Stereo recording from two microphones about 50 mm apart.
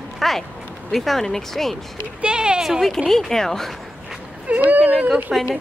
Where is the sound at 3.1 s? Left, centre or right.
Centre.